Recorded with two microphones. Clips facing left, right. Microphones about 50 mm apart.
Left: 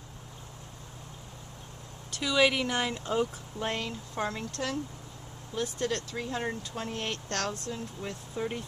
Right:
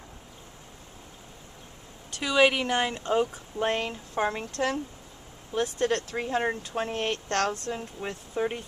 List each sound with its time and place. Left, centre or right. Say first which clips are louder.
2.2 s a woman's voice: right 3 dB; right